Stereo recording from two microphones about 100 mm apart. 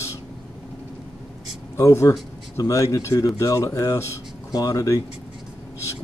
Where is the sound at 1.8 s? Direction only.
30° left (ahead or behind).